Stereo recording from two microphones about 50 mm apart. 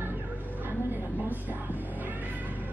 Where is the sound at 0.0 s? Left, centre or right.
Right.